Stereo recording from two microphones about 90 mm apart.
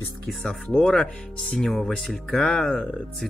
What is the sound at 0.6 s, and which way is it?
Speech, 10° left (ahead or behind).